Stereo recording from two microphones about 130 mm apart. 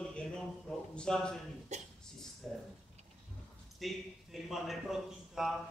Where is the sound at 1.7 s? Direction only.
60° right (ahead or behind).